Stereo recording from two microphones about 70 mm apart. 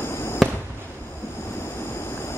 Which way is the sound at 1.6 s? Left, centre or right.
Left.